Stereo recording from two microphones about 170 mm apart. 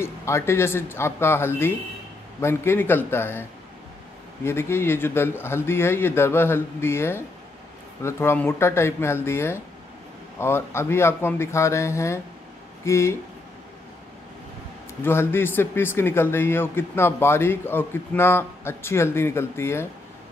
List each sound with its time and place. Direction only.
0.0 s speech: 15° left (ahead or behind)
4.5 s speech: 15° left (ahead or behind)
15.0 s speech: 15° left (ahead or behind)